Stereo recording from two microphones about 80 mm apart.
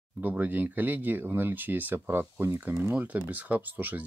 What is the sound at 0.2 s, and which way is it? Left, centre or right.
Speech, right.